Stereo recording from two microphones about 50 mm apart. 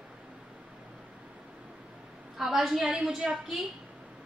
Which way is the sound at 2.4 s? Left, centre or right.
Centre.